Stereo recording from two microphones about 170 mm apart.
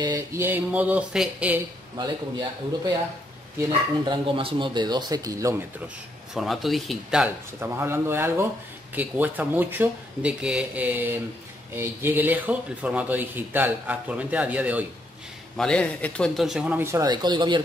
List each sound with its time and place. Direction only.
0.0 s speech: 20° right (ahead or behind)
2.0 s speech: 25° right (ahead or behind)
6.3 s speech: centre (ahead or behind)
7.6 s speech: 15° right (ahead or behind)
15.5 s speech: 5° left (ahead or behind); by 17.6 s 25° right (ahead or behind)